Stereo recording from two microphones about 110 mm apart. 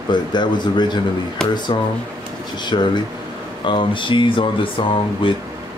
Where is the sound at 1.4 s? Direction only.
5° left (ahead or behind).